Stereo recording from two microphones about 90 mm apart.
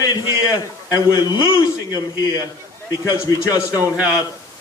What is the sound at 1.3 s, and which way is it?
A man's voice, 50° left (ahead or behind).